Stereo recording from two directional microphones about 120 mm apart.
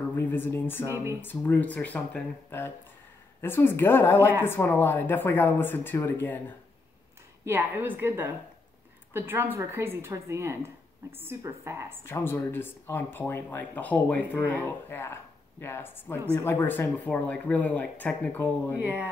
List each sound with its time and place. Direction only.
0.1 s speech: 20° left (ahead or behind)
0.8 s a woman's voice: 25° right (ahead or behind)
1.2 s a woman's voice: 15° left (ahead or behind)
7.4 s a woman's voice: 15° right (ahead or behind)
12.1 s a woman's voice: 20° left (ahead or behind)
18.8 s a woman's voice: 15° right (ahead or behind)